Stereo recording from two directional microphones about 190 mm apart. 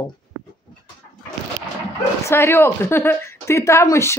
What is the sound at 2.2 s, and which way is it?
Speech, 15° left (ahead or behind).